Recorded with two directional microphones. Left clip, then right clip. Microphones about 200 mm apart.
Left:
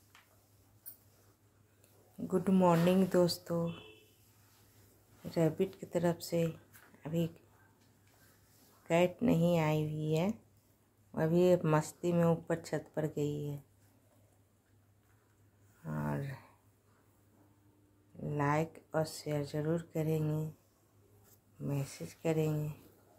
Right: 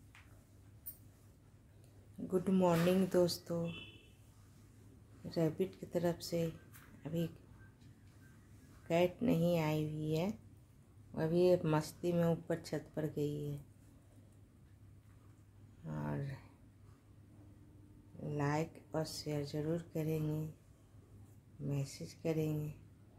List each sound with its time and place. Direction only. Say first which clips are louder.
2.2 s speech: left 4 dB; 10° left (ahead or behind)
5.3 s speech: left 4 dB; 10° left (ahead or behind)
8.8 s speech: left 3 dB; 10° left (ahead or behind)
15.8 s a sound: left 4 dB; 10° left (ahead or behind)
18.3 s speech: left 5 dB; 15° left (ahead or behind)
21.6 s speech: left 3 dB; 15° left (ahead or behind)